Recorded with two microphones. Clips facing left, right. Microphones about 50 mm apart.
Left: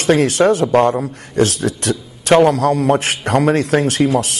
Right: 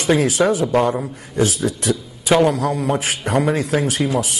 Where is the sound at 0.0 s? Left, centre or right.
Left.